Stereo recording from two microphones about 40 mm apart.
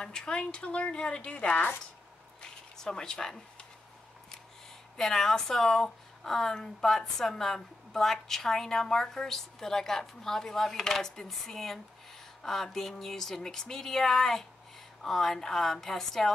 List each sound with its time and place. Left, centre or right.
0.0 s a woman's voice: centre; by 1.7 s left
2.8 s a woman's voice: centre
4.9 s a woman's voice: centre